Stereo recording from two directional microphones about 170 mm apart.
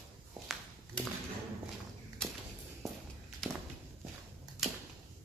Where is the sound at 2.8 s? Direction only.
Centre (ahead or behind).